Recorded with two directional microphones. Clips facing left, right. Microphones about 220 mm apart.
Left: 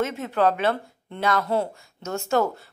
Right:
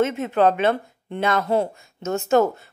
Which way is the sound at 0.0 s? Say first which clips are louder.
Right 4 dB; 20° right (ahead or behind).